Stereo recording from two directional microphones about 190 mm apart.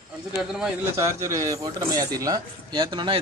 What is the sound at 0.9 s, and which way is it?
Speech, 15° right (ahead or behind).